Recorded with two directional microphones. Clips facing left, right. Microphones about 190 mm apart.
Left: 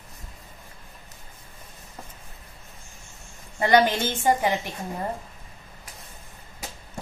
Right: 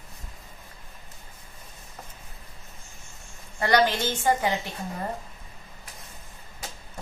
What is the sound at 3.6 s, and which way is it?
Speech, 20° left (ahead or behind).